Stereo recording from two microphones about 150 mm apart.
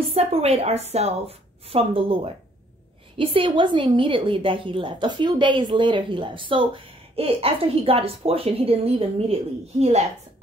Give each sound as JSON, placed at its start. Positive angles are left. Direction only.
{"t": 0.1, "sound": "a woman's voice", "side_deg": -40}